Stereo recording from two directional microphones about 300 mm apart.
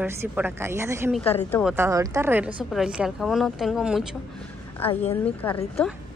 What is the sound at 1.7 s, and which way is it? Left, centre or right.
A woman's voice, centre.